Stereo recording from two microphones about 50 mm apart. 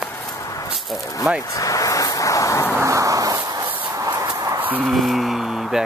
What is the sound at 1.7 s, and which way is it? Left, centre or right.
Vehicle, left.